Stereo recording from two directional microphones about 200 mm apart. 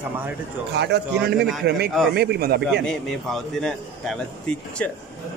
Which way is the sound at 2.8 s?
5° left (ahead or behind).